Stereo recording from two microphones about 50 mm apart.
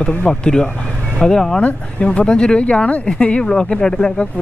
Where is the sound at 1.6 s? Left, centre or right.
Left.